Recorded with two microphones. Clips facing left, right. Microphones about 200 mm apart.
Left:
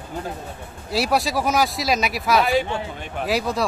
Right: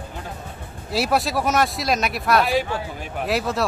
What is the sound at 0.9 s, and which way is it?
Speech, centre (ahead or behind).